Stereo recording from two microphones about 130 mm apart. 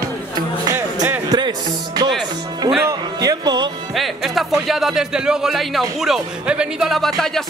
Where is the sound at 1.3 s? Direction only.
30° right (ahead or behind).